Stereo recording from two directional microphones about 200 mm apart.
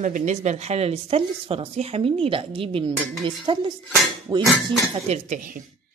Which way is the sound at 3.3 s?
25° right (ahead or behind).